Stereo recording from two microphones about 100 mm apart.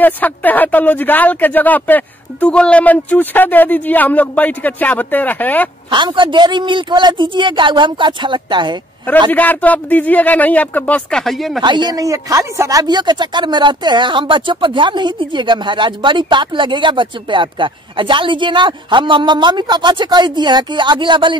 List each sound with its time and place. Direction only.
0.0 s speech: 15° left (ahead or behind)
5.9 s speech: 50° right (ahead or behind)
9.3 s speech: 15° left (ahead or behind); by 11.6 s centre (ahead or behind)
11.6 s speech: 50° right (ahead or behind)